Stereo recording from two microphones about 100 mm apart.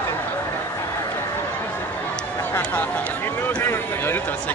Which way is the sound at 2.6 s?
15° left (ahead or behind).